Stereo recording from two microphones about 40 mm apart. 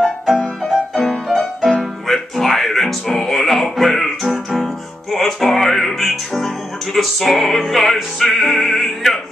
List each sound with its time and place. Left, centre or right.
0.0 s music: centre